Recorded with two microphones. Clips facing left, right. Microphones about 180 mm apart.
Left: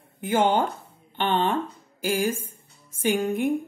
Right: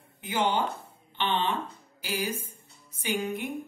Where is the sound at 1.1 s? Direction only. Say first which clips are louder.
Left 5 dB; 45° left (ahead or behind).